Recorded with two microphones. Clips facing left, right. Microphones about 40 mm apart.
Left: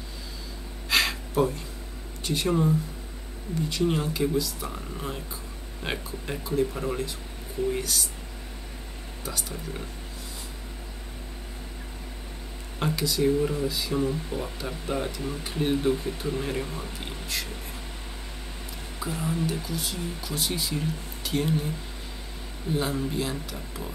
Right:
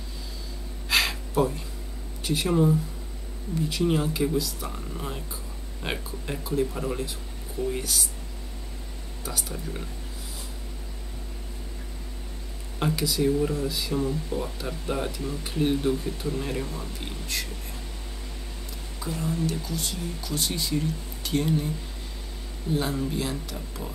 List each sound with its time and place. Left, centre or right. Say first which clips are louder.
0.8 s a sound: even; centre
2.2 s speech: right 2 dB; centre
9.2 s speech: right 1 dB; centre
12.7 s speech: right 1 dB; centre
13.2 s speech: left 1 dB; centre
17.0 s speech: right 1 dB; centre
18.9 s speech: even; centre
22.8 s speech: even; centre